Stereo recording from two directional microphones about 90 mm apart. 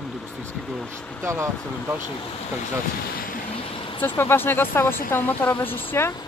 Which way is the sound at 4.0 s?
25° left (ahead or behind).